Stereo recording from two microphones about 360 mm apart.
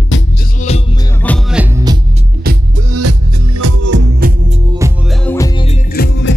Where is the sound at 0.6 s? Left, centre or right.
Centre.